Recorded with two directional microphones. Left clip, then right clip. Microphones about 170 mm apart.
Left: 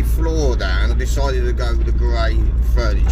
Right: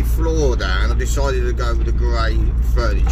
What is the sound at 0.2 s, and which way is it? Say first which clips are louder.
Speech: right 1 dB; 15° right (ahead or behind).